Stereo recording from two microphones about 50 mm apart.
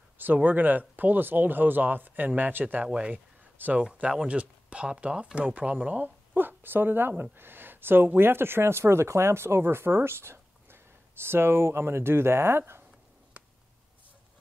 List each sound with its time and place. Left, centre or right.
0.2 s speech: right
2.8 s speech: right
3.6 s speech: right
4.2 s speech: right